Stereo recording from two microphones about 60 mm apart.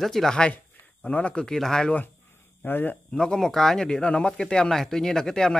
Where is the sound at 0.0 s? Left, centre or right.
Centre.